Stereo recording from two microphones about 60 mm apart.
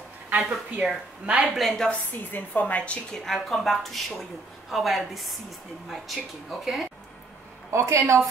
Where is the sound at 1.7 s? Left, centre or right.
Centre.